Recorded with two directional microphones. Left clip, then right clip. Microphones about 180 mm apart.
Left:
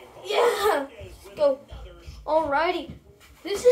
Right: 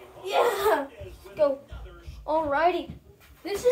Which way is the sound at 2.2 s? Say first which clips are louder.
Left 1 dB; 40° left (ahead or behind).